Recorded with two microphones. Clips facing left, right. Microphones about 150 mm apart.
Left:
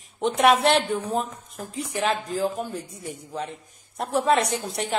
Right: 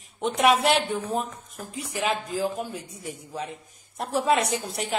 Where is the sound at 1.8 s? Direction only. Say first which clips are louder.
Left 2 dB; 10° right (ahead or behind).